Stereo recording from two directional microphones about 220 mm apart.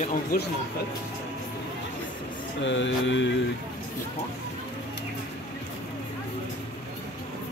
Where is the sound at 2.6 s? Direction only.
55° left (ahead or behind).